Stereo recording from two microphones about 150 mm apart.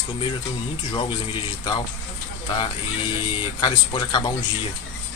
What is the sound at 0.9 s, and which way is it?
Speech, 35° left (ahead or behind).